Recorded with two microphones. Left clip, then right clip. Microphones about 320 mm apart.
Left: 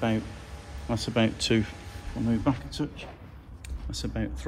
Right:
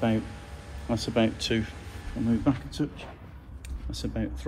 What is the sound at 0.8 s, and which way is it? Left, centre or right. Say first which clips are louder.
Speech: right 1 dB; left.